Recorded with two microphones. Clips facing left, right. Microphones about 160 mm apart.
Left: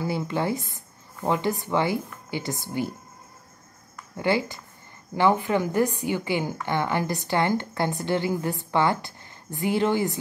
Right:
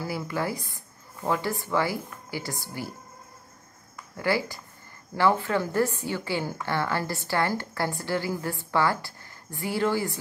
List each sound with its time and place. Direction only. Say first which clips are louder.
0.0 s speech: left 3 dB; 25° left (ahead or behind)
4.2 s a woman's voice: left 2 dB; 20° left (ahead or behind)